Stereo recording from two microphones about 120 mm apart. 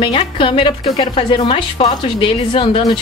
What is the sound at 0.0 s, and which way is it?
A woman's voice, 45° left (ahead or behind).